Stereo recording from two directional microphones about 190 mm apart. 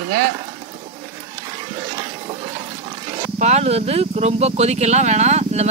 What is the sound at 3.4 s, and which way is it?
Speech, 35° right (ahead or behind).